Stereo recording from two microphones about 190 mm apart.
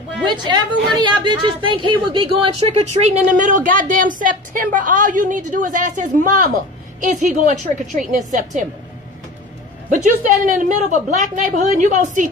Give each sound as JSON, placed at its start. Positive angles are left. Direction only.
{"t": 0.3, "sound": "a woman's voice", "side_deg": -25}
{"t": 9.8, "sound": "a woman's voice", "side_deg": -45}